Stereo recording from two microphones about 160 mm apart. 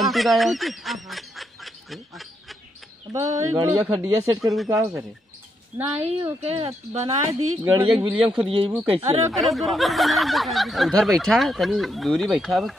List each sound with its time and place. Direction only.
0.0 s speech: centre (ahead or behind)
3.1 s speech: 20° right (ahead or behind)
6.4 s speech: 35° right (ahead or behind)
7.2 s speech: 20° right (ahead or behind)
7.8 s speech: 30° right (ahead or behind)
9.3 s speech: centre (ahead or behind)